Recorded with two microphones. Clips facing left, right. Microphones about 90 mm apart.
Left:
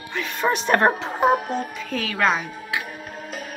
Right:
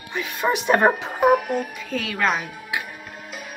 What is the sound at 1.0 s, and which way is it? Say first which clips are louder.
Speech: right 2 dB; 20° left (ahead or behind).